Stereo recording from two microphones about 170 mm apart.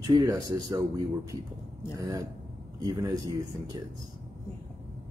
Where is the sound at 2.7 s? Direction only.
20° right (ahead or behind).